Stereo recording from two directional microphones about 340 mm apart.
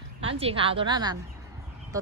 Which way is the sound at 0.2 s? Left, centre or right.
Centre.